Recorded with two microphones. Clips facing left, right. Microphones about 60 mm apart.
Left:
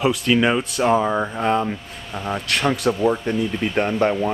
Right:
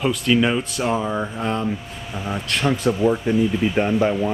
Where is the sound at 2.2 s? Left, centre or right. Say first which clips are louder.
Left 2 dB; centre.